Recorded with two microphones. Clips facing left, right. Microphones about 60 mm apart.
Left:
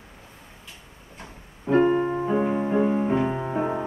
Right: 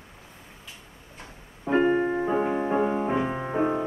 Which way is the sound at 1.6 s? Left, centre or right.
Centre.